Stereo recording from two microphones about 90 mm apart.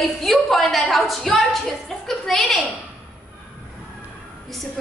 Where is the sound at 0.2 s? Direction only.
Centre (ahead or behind).